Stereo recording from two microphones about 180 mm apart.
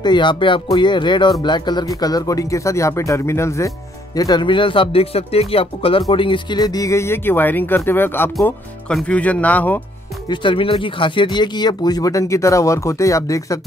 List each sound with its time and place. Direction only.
0.0 s speech: 25° left (ahead or behind); by 9.8 s 10° left (ahead or behind)
10.2 s speech: 25° left (ahead or behind)